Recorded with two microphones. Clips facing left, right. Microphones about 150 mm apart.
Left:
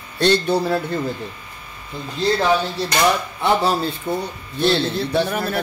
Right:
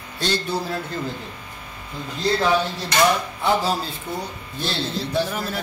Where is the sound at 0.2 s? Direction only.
65° left (ahead or behind).